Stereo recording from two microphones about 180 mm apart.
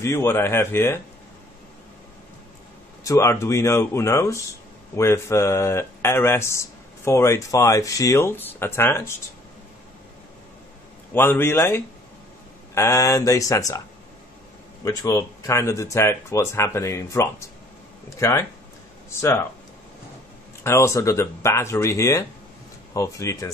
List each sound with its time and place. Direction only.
0.0 s speech: 15° left (ahead or behind)
3.0 s speech: 15° left (ahead or behind)
11.1 s speech: 15° left (ahead or behind)
14.9 s speech: 15° left (ahead or behind)
20.6 s speech: 15° left (ahead or behind)